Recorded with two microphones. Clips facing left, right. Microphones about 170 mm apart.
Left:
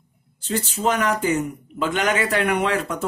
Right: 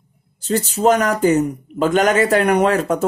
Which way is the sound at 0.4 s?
40° right (ahead or behind).